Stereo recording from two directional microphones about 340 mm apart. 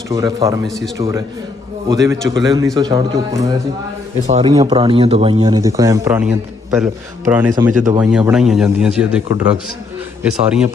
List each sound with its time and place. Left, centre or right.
0.1 s speech: centre
0.7 s a man's voice: centre
7.7 s speech: right
8.0 s a man's voice: centre
10.4 s a man's voice: centre